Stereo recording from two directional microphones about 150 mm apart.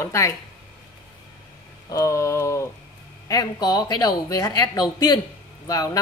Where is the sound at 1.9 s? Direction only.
20° left (ahead or behind).